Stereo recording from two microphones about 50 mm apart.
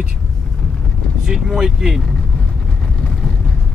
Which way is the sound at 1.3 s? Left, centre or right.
Centre.